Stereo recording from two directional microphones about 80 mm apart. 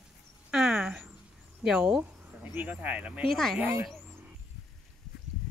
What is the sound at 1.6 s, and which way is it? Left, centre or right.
Speech, centre.